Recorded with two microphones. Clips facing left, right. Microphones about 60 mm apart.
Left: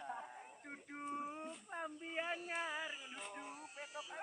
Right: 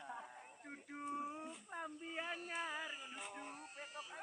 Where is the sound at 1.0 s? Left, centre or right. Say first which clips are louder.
Even; left.